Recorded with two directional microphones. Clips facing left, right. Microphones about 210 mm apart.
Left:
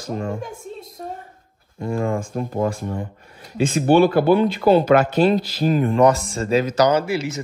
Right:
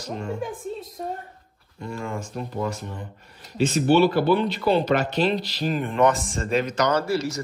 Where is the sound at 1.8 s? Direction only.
50° left (ahead or behind).